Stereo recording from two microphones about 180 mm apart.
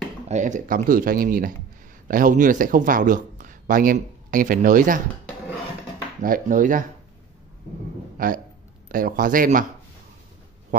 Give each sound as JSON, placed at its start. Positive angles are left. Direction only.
{"t": 0.3, "sound": "a man's voice", "side_deg": -45}
{"t": 6.2, "sound": "speech", "side_deg": -50}
{"t": 8.2, "sound": "speech", "side_deg": -50}
{"t": 10.7, "sound": "a sound", "side_deg": -45}